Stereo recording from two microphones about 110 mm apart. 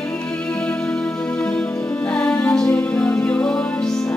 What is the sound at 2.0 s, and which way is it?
Music, 10° left (ahead or behind).